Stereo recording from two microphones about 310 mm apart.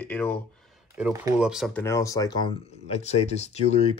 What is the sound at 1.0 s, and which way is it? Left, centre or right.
Speech, centre.